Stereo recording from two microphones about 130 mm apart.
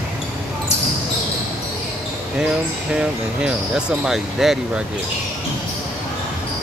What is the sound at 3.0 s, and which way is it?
Speech, 5° right (ahead or behind).